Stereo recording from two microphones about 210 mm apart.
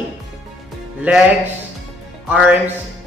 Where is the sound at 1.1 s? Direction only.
10° right (ahead or behind).